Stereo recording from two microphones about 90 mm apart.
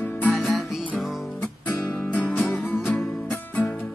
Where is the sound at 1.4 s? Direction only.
20° left (ahead or behind).